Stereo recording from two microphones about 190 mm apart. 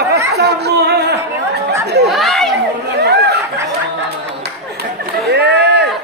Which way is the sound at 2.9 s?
60° right (ahead or behind).